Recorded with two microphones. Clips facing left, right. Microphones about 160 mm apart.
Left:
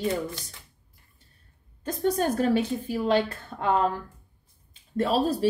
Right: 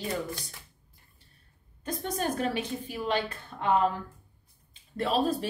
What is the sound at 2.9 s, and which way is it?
Speech, 45° left (ahead or behind).